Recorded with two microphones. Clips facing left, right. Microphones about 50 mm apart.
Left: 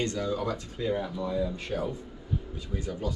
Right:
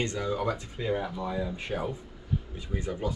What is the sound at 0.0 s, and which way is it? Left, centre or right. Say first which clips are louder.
Speech: even; centre.